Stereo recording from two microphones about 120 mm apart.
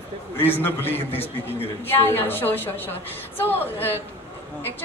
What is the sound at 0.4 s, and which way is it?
A woman's voice, 15° left (ahead or behind).